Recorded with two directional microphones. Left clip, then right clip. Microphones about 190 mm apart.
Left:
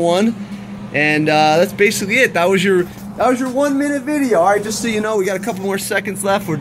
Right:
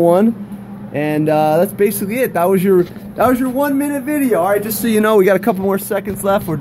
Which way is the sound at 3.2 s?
55° right (ahead or behind).